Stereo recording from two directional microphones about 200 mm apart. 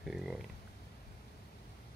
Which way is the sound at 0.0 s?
5° right (ahead or behind).